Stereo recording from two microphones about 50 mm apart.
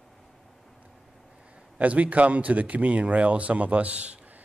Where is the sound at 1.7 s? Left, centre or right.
Right.